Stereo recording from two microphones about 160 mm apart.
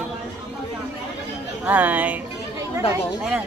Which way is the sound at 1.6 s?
10° right (ahead or behind).